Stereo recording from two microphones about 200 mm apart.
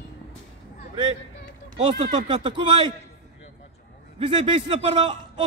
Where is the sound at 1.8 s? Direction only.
30° right (ahead or behind).